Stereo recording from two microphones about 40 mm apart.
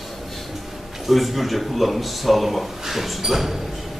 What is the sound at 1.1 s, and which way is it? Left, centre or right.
A man's voice, centre.